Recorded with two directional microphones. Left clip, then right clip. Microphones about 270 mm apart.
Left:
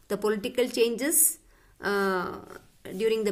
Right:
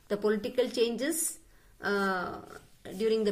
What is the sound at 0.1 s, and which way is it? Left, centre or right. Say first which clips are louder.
A woman's voice: left 2 dB; left.